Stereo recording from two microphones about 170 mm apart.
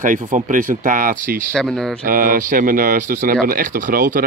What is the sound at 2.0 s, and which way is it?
Speech, 55° right (ahead or behind).